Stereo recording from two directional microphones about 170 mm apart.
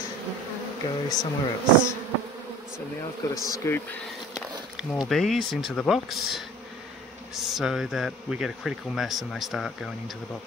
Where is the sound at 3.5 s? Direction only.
15° left (ahead or behind).